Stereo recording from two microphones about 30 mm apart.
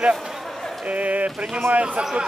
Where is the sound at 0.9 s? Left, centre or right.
Right.